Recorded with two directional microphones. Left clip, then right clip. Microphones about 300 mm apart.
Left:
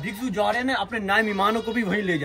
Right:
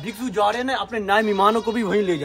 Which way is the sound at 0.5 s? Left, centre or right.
Centre.